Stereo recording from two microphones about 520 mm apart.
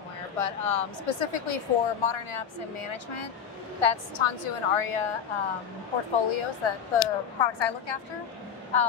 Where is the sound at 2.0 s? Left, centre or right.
Left.